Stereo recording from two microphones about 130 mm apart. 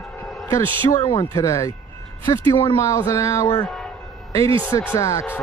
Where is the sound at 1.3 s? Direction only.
25° left (ahead or behind).